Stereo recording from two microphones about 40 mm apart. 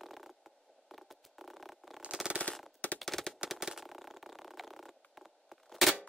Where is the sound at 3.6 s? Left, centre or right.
Centre.